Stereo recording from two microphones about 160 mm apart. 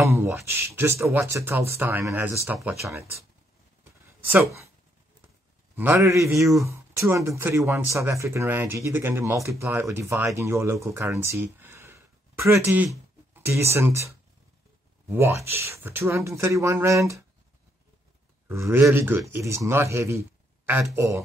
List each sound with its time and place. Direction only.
0.0 s speech: 15° right (ahead or behind)
5.8 s speech: 15° right (ahead or behind)
18.5 s speech: 15° right (ahead or behind)